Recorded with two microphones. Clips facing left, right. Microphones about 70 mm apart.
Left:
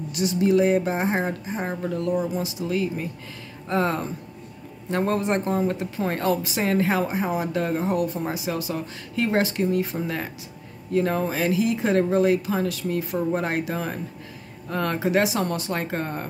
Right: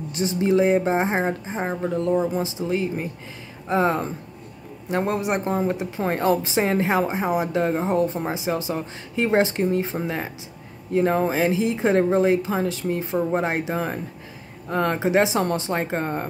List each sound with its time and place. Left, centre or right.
0.1 s speech: right